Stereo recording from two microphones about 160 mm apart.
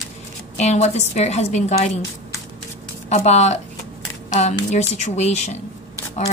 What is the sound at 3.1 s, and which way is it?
A woman's voice, 45° left (ahead or behind).